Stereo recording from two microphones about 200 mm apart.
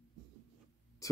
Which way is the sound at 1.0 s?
15° left (ahead or behind).